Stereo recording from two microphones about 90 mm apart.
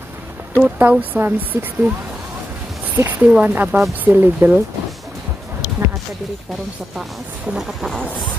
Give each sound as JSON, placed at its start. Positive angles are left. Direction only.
{"t": 0.7, "sound": "speech", "side_deg": -15}
{"t": 3.0, "sound": "speech", "side_deg": -20}
{"t": 7.5, "sound": "speech", "side_deg": -5}